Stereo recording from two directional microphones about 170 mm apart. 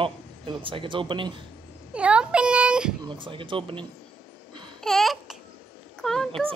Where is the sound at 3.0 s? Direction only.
30° right (ahead or behind).